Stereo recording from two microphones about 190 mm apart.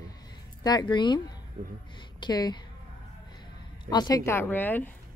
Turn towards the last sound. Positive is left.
turn(degrees=10)  # may be behind; listen again after turning